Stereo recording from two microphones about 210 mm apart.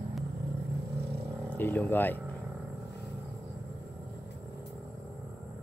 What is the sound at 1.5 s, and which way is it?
Speech, 10° left (ahead or behind).